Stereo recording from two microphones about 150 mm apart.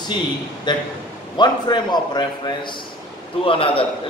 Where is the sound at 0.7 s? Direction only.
30° left (ahead or behind).